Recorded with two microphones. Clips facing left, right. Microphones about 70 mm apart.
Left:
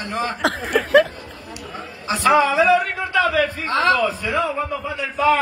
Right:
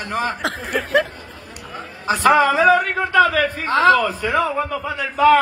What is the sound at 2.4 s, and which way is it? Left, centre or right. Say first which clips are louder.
A man's voice: right 1 dB; right.